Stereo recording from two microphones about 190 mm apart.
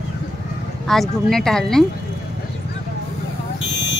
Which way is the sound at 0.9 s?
Centre (ahead or behind).